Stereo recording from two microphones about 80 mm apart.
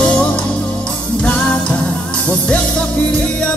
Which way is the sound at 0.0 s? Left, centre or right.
Centre.